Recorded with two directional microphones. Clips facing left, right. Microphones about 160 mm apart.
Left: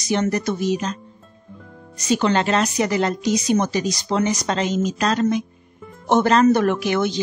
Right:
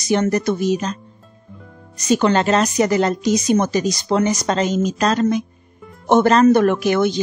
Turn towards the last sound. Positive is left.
turn(degrees=-50)  # may be behind; listen again after turning